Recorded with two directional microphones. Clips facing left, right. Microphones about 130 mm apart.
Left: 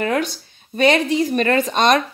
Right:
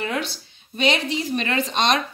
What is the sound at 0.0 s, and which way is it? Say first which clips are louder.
Speech: left 6 dB; 45° left (ahead or behind).